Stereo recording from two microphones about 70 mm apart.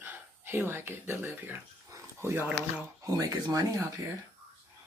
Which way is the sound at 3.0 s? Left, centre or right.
Right.